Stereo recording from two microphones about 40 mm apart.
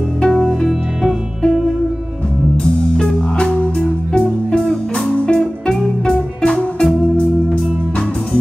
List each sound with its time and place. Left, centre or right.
0.2 s music: centre
0.7 s music: centre
2.5 s music: centre